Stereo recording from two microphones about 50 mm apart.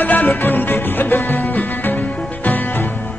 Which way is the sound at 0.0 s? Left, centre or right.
Left.